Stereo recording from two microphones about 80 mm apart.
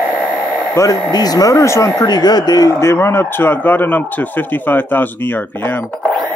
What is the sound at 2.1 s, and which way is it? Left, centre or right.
Speech, left.